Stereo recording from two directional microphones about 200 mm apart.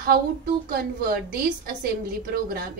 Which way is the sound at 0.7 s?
50° right (ahead or behind).